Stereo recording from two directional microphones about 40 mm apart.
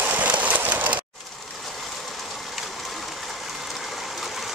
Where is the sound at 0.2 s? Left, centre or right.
Right.